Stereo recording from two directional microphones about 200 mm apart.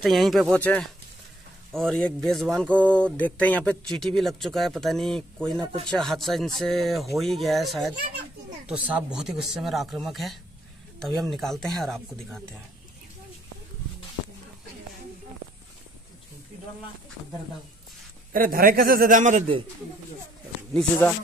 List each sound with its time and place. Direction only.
0.0 s speech: centre (ahead or behind)
18.3 s a man's voice: 45° right (ahead or behind)